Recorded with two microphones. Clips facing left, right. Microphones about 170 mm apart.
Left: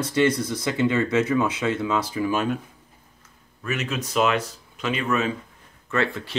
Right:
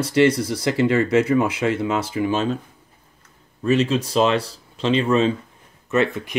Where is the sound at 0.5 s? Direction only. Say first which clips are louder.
Right 4 dB; 30° right (ahead or behind).